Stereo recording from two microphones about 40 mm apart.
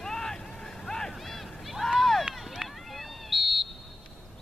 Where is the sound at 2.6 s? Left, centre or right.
Centre.